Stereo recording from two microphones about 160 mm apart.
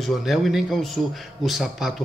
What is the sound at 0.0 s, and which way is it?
A man's voice, centre (ahead or behind).